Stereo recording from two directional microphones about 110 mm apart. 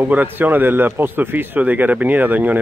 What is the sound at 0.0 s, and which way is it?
A man's voice, 15° right (ahead or behind).